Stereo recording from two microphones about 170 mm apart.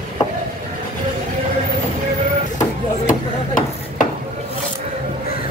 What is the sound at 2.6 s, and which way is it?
Chop, 50° left (ahead or behind).